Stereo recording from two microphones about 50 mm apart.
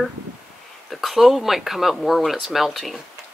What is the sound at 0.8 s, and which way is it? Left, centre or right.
Speech, centre.